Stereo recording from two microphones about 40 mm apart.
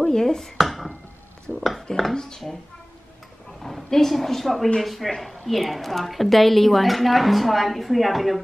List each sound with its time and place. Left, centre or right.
0.0 s speech: centre
0.6 s a sound: centre
2.1 s speech: centre
3.6 s a woman's voice: centre